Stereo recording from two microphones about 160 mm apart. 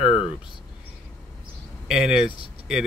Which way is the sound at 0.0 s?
35° left (ahead or behind).